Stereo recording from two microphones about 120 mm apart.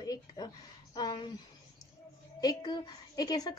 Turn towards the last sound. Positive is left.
turn(degrees=35)  # may be behind; listen again after turning